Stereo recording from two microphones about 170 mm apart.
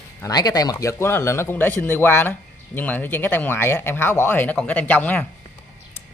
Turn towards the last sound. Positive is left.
turn(degrees=10)  # may be behind; listen again after turning